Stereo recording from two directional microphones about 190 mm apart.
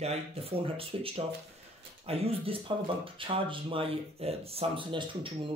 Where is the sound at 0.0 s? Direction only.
30° right (ahead or behind).